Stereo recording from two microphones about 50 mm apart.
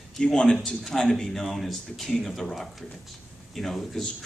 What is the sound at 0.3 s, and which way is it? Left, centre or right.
Speech, centre.